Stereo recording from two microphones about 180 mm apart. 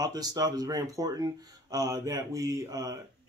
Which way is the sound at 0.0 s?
20° right (ahead or behind).